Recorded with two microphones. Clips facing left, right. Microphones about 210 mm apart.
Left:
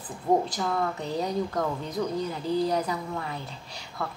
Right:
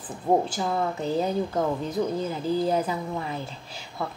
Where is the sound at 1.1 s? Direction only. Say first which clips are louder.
Right 3 dB; 5° right (ahead or behind).